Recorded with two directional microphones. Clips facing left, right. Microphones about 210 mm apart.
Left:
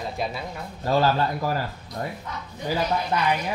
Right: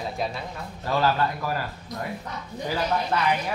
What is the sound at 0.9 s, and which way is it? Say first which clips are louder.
Speech: left 2 dB; 30° left (ahead or behind).